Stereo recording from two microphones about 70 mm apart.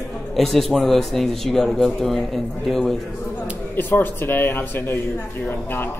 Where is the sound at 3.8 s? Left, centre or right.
Left.